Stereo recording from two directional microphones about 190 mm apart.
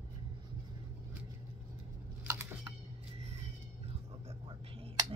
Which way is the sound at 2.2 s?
15° right (ahead or behind).